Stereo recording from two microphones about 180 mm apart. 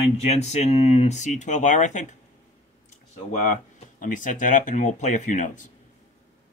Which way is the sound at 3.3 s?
40° left (ahead or behind).